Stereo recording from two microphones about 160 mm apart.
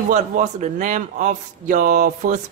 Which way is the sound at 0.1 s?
50° right (ahead or behind).